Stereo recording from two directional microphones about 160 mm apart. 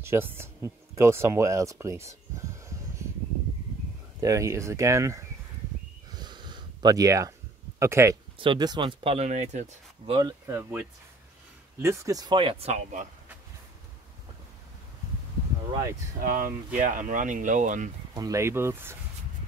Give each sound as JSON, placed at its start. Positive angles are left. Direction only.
{"t": 0.0, "sound": "speech", "side_deg": -15}
{"t": 4.2, "sound": "speech", "side_deg": -20}
{"t": 6.1, "sound": "a sound", "side_deg": -25}
{"t": 7.8, "sound": "speech", "side_deg": -20}
{"t": 8.4, "sound": "speech", "side_deg": -30}
{"t": 10.1, "sound": "speech", "side_deg": -20}
{"t": 16.2, "sound": "speech", "side_deg": -60}
{"t": 18.1, "sound": "speech", "side_deg": -20}